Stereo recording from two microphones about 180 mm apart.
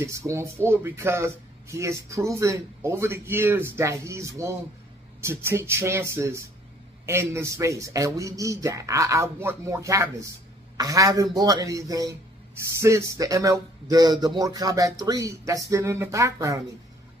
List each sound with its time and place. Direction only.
0.0 s speech: 15° right (ahead or behind)